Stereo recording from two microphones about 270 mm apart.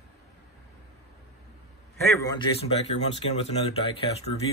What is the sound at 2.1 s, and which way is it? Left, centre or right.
Speech, centre.